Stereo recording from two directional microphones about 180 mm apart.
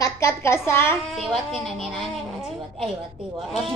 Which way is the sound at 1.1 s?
Centre (ahead or behind).